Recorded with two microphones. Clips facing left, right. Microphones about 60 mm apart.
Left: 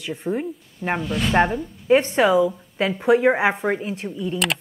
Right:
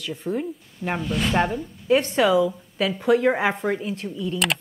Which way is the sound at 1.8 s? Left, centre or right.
Left.